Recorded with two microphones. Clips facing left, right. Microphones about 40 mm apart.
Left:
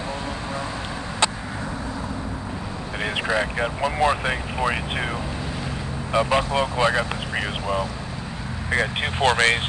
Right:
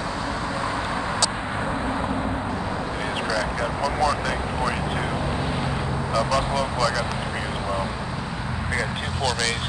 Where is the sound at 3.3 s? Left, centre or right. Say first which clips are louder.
Left 3 dB; left.